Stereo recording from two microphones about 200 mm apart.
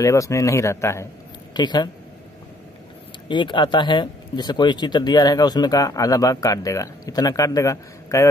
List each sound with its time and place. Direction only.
0.0 s speech: 15° left (ahead or behind)
3.3 s speech: 25° left (ahead or behind)